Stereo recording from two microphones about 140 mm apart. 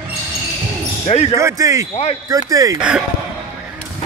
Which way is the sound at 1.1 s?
50° left (ahead or behind).